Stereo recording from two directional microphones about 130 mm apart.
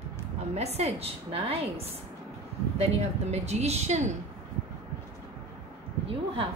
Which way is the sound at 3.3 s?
55° right (ahead or behind).